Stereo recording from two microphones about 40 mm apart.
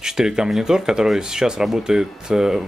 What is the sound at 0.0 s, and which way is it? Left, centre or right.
Speech, centre.